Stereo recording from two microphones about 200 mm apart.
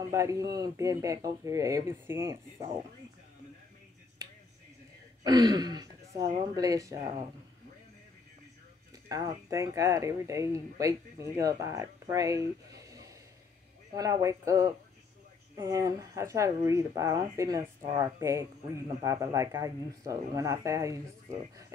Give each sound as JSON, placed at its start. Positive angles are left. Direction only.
{"t": 0.1, "sound": "speech", "side_deg": -15}
{"t": 5.2, "sound": "speech", "side_deg": -20}
{"t": 9.1, "sound": "speech", "side_deg": -15}
{"t": 12.7, "sound": "a sound", "side_deg": -15}
{"t": 13.9, "sound": "speech", "side_deg": -15}